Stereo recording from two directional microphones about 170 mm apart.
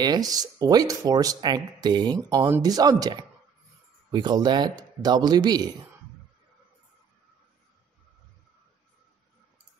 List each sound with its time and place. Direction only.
0.0 s speech: 25° right (ahead or behind)